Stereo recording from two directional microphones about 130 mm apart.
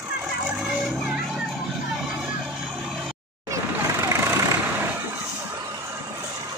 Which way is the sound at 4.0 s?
25° right (ahead or behind).